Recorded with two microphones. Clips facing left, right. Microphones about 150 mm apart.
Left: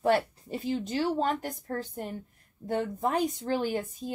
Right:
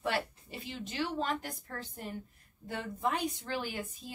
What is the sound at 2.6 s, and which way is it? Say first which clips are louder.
A woman's voice: left 6 dB; 40° left (ahead or behind).